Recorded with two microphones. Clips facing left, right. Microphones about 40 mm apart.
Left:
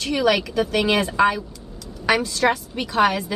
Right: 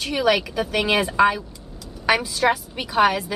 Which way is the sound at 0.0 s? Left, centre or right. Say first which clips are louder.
Even; centre.